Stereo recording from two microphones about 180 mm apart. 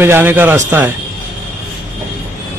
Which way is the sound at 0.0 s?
10° right (ahead or behind).